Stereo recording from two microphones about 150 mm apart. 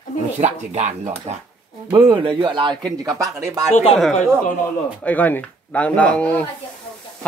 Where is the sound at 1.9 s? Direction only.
35° right (ahead or behind).